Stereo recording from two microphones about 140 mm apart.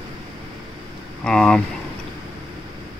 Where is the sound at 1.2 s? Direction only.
5° left (ahead or behind).